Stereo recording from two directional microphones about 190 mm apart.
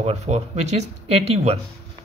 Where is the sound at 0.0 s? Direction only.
35° right (ahead or behind).